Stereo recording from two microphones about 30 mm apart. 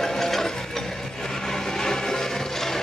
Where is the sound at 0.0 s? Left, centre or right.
Centre.